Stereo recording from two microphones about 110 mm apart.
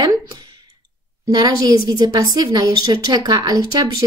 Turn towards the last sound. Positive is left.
turn(degrees=-35)  # may be behind; listen again after turning